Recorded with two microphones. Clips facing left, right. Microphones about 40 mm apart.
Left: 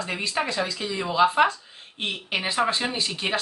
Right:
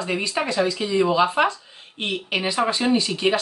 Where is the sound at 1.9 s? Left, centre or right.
Right.